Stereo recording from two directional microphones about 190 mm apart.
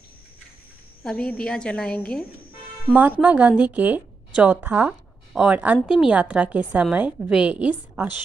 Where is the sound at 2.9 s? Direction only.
10° right (ahead or behind).